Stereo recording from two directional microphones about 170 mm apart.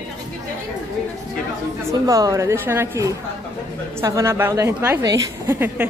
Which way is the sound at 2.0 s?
20° right (ahead or behind).